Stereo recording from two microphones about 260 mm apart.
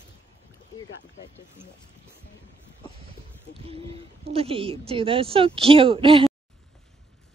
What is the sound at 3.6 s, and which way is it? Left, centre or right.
A woman's voice, right.